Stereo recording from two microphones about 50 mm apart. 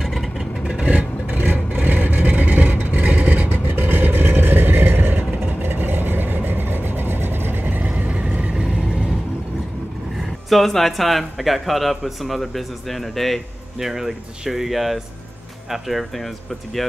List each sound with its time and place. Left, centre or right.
0.0 s vehicle: centre
0.7 s vehicle: right
1.2 s vehicle: right
10.5 s a man's voice: centre